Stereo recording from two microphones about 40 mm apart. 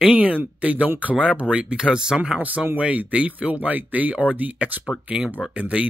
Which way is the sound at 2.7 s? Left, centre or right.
Right.